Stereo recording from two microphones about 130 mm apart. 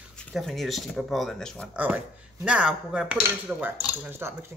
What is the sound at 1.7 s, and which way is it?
Speech, 10° right (ahead or behind).